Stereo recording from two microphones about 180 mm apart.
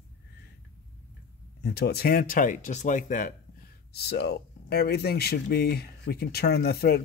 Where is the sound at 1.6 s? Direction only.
65° left (ahead or behind); by 3.3 s 45° left (ahead or behind).